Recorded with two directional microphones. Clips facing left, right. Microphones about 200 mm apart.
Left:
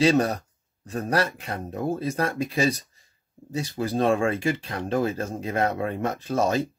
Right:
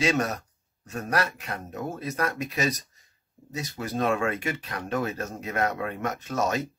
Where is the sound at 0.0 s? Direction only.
30° left (ahead or behind).